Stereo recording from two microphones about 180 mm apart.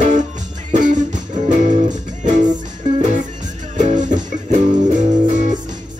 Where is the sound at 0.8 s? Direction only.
45° right (ahead or behind).